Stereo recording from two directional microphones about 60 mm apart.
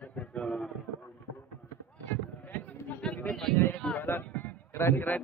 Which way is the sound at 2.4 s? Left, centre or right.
Left.